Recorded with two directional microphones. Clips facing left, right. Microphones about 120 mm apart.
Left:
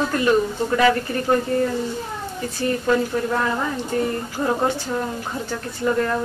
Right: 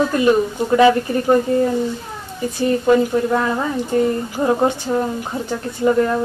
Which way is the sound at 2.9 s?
20° right (ahead or behind).